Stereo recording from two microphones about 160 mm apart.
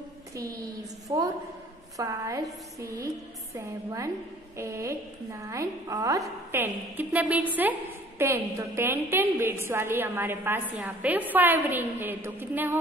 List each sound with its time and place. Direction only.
1.0 s a woman's voice: 25° right (ahead or behind)
3.5 s a woman's voice: 20° right (ahead or behind)